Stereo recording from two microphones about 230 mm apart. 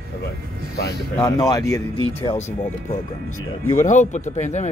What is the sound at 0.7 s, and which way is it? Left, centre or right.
Speech, left.